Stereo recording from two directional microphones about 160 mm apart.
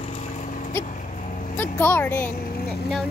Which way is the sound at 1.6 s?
10° left (ahead or behind).